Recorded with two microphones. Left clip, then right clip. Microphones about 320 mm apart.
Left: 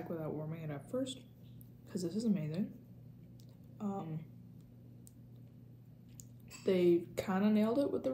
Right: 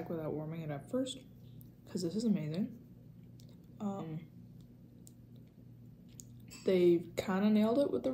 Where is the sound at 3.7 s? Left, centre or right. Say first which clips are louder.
Even; centre.